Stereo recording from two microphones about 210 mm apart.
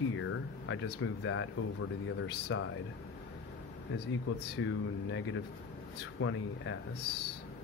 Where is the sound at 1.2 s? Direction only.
70° left (ahead or behind).